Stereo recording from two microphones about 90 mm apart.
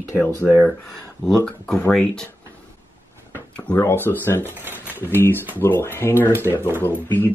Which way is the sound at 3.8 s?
25° left (ahead or behind).